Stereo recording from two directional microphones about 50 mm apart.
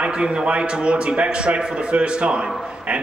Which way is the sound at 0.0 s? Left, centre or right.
Right.